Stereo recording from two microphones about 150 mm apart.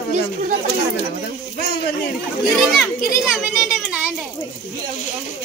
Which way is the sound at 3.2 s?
5° right (ahead or behind).